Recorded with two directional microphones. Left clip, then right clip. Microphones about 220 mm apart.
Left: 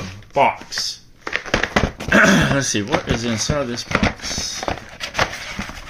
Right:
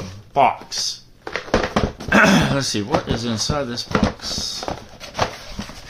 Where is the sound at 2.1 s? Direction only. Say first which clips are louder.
Left 1 dB; 5° left (ahead or behind).